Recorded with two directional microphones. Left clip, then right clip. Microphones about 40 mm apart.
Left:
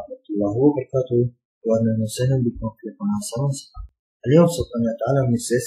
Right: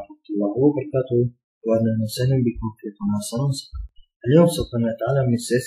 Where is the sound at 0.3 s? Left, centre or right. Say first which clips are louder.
Left 1 dB; centre.